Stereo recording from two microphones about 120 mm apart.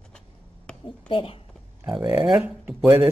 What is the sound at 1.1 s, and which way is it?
Speech, 50° left (ahead or behind).